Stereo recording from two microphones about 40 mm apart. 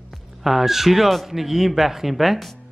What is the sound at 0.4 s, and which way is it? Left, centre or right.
Speech, centre.